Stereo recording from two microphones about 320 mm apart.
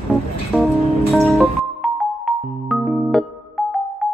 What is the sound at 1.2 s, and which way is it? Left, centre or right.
Music, centre.